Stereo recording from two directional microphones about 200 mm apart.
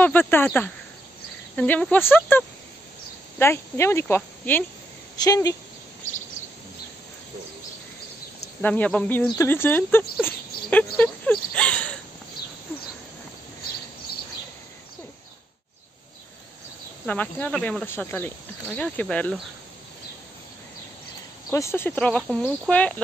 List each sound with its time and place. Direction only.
0.0 s speech: 10° left (ahead or behind)
8.5 s speech: 5° left (ahead or behind)
17.0 s speech: 5° left (ahead or behind)
21.5 s speech: 15° left (ahead or behind)